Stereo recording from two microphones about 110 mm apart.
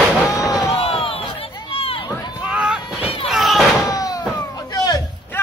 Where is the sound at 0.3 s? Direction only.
35° left (ahead or behind).